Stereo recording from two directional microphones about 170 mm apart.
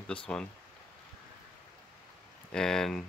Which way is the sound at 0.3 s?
5° left (ahead or behind).